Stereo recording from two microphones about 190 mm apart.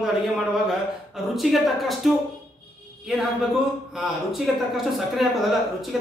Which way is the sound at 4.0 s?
Centre (ahead or behind).